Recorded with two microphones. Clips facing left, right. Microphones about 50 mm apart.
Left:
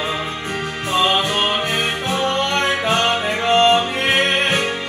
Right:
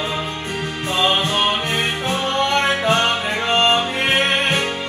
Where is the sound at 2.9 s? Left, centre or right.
Centre.